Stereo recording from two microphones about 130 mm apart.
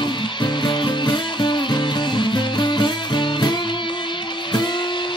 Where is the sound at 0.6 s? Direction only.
35° left (ahead or behind).